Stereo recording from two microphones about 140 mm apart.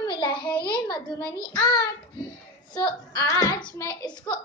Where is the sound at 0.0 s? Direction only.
30° left (ahead or behind).